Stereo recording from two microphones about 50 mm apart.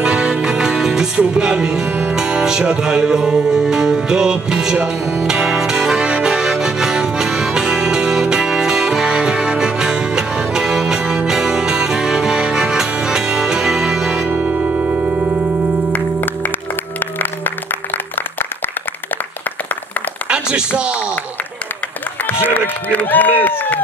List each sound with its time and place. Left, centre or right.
0.0 s music: centre
20.2 s a sound: centre
22.2 s applause: left
22.9 s run: left